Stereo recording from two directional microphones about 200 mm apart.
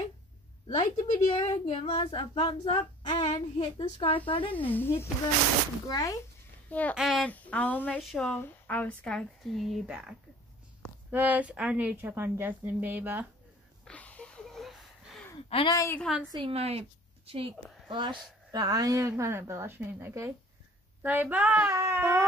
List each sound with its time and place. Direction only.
0.7 s a child's voice: 35° left (ahead or behind)
4.6 s a child's voice: 10° left (ahead or behind)
6.7 s speech: 5° left (ahead or behind); by 13.3 s 10° right (ahead or behind)
13.8 s a sound: 5° left (ahead or behind)
15.5 s speech: 20° left (ahead or behind)
16.0 s speech: 5° right (ahead or behind)
16.3 s a woman's voice: 25° right (ahead or behind); by 21.7 s 5° right (ahead or behind)
21.7 s a sound: 15° right (ahead or behind)